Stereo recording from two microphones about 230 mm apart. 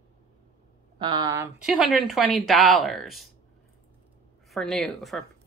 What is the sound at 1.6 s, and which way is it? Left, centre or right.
Speech, centre.